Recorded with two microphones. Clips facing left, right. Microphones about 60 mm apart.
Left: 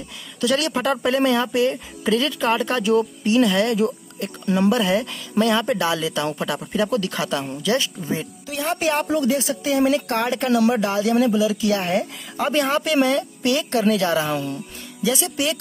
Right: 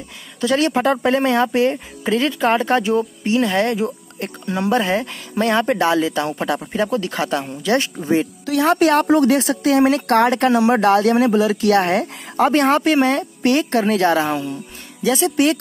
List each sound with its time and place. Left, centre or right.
0.4 s speech: right
8.1 s speech: right